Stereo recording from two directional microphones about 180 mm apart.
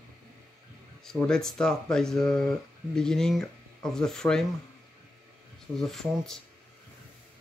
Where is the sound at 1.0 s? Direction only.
5° left (ahead or behind).